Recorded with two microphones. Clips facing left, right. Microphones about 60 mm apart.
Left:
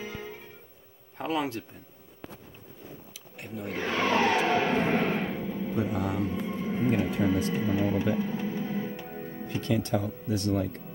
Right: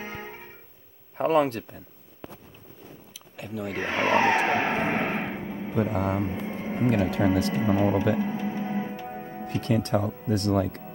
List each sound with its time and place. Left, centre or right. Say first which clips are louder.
0.0 s music: right 1 dB; right
1.1 s speech: right 8 dB; right
3.7 s a sound: right 3 dB; right
5.8 s speech: right 4 dB; right
7.2 s speech: right 3 dB; right
7.6 s speech: right 4 dB; right
8.2 s music: right 2 dB; right
9.0 s music: right 3 dB; centre
9.5 s speech: right 3 dB; right